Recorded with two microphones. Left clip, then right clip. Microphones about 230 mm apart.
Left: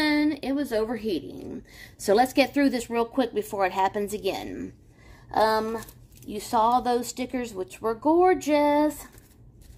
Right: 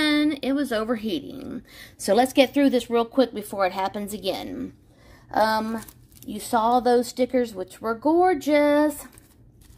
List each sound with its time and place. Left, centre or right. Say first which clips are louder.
0.0 s a woman's voice: right 2 dB; right
5.3 s a woman's voice: right 1 dB; right